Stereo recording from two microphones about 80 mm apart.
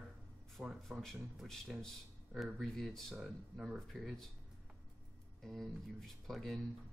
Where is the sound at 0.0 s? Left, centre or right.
Centre.